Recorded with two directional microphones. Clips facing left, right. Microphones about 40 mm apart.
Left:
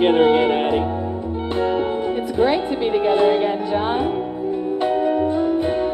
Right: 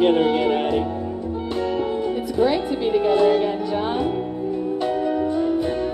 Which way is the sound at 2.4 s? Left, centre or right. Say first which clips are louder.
Left 2 dB; left.